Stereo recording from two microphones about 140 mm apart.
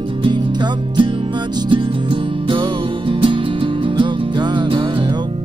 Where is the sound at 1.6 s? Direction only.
40° right (ahead or behind).